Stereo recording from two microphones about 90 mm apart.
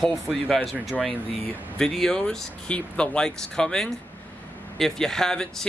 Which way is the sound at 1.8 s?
5° left (ahead or behind).